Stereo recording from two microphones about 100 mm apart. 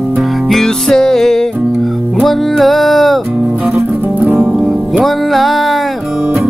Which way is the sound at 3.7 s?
15° right (ahead or behind).